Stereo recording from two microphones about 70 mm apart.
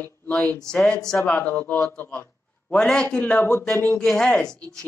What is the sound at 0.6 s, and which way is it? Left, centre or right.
Speech, centre.